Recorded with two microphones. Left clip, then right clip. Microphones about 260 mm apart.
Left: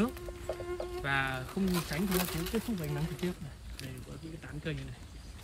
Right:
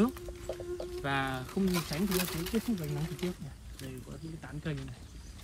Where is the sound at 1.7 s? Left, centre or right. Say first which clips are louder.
Even; right.